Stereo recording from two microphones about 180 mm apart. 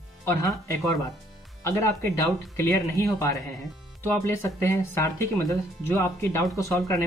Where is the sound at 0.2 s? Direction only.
15° left (ahead or behind).